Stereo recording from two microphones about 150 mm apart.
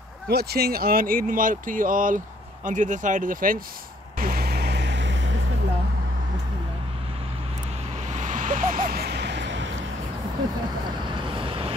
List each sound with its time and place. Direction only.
0.3 s speech: 90° right; by 3.6 s 70° right (ahead or behind)
4.2 s vehicle: 80° right
8.1 s vehicle: 55° right (ahead or behind); by 9.2 s 90° right
11.1 s vehicle: 35° right (ahead or behind)